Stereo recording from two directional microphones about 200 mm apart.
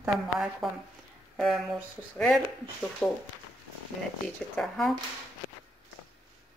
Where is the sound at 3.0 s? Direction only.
5° left (ahead or behind).